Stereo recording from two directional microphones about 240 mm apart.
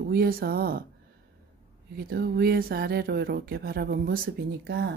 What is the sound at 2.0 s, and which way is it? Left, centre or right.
Speech, right.